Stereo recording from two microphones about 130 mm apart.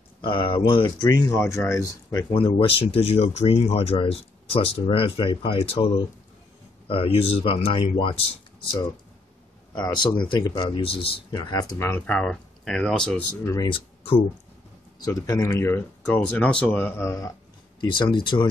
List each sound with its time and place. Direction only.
0.2 s speech: 40° left (ahead or behind)
2.3 s speech: 45° left (ahead or behind)
9.8 s speech: 35° left (ahead or behind)
11.4 s speech: 20° left (ahead or behind)
12.1 s speech: 5° left (ahead or behind)
13.7 s speech: 45° left (ahead or behind)
15.0 s speech: 30° left (ahead or behind)
17.7 s speech: 35° left (ahead or behind)